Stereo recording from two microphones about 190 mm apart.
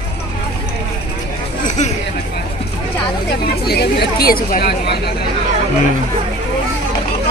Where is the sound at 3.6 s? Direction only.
55° left (ahead or behind).